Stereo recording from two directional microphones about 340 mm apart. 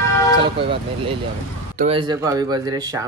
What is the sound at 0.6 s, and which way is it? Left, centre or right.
Speech, centre.